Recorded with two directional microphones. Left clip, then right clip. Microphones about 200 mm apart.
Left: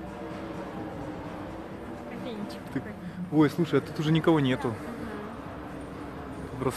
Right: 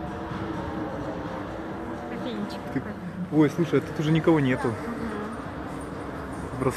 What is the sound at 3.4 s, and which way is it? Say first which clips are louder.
Speech: right 2 dB; 25° left (ahead or behind).